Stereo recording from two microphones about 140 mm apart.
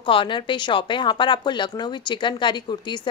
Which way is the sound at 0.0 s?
35° left (ahead or behind).